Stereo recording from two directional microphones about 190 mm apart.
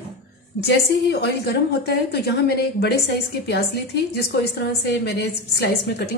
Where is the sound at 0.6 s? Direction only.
60° left (ahead or behind).